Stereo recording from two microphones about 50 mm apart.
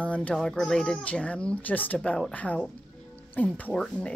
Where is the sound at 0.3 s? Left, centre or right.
Centre.